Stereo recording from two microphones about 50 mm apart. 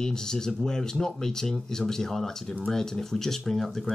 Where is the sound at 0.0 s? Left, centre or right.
Centre.